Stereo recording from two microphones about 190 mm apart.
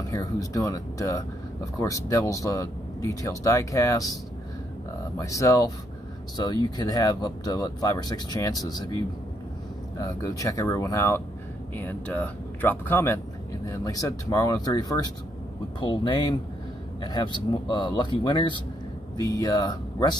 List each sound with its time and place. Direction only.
0.1 s speech: 20° left (ahead or behind)
5.1 s speech: 15° left (ahead or behind)